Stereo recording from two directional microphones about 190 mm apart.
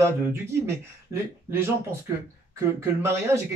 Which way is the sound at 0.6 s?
15° right (ahead or behind).